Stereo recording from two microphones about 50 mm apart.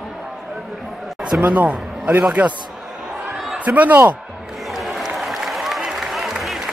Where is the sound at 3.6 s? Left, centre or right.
Right.